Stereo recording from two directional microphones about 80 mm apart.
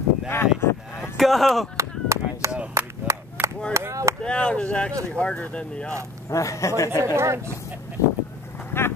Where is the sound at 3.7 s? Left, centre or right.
Right.